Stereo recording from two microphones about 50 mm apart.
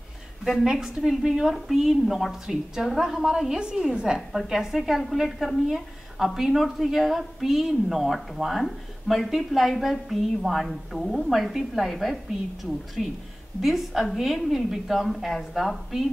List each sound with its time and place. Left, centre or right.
0.7 s a woman's voice: centre
4.3 s a woman's voice: centre